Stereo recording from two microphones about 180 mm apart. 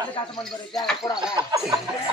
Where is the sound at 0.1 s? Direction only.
25° left (ahead or behind).